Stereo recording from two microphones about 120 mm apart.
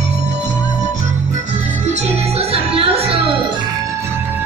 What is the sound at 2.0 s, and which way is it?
Music, 60° right (ahead or behind).